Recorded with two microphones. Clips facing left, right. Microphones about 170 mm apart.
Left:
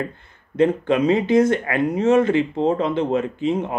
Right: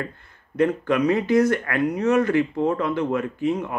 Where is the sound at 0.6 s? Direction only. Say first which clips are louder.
Left 3 dB; 25° left (ahead or behind).